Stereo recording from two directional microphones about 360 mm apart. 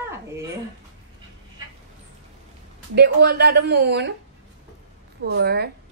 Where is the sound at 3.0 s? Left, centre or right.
Right.